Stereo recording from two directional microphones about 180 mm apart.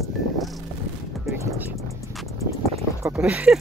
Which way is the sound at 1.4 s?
10° right (ahead or behind).